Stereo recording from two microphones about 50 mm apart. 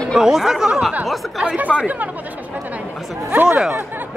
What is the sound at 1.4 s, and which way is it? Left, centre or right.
Speech, right.